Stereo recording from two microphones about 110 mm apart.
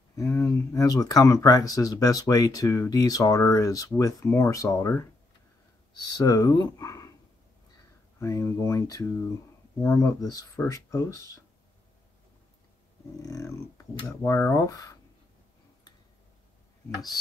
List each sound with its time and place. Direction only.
0.1 s a sound: 25° left (ahead or behind)
0.7 s speech: 35° left (ahead or behind)
6.1 s speech: 30° left (ahead or behind)
8.2 s speech: 25° left (ahead or behind)
13.2 s speech: 30° left (ahead or behind)